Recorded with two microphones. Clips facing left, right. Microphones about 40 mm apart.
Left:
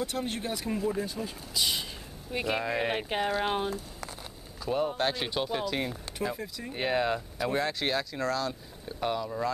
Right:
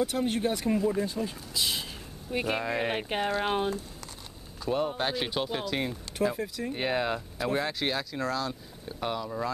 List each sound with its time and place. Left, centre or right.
0.0 s speech: centre